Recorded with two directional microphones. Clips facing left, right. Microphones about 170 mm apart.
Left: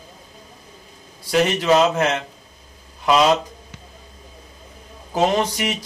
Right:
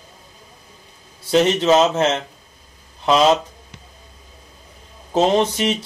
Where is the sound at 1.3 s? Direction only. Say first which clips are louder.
Right 2 dB; 25° right (ahead or behind).